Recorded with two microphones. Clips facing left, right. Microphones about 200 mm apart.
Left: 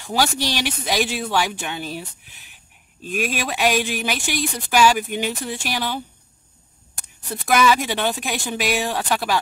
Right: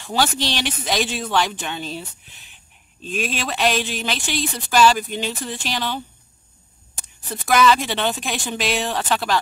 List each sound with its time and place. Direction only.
0.0 s speech: 10° left (ahead or behind)
7.2 s speech: 10° left (ahead or behind)